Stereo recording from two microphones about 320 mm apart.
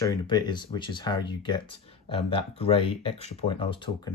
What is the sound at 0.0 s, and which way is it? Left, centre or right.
Speech, centre.